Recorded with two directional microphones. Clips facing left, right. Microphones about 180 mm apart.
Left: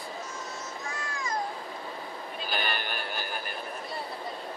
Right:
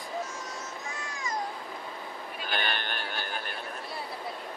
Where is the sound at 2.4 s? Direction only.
5° left (ahead or behind).